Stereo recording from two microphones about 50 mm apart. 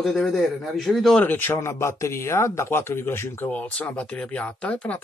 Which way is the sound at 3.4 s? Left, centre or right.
Left.